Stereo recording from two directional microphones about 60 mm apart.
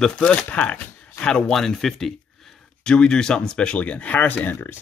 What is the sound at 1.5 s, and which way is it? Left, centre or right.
Speech, centre.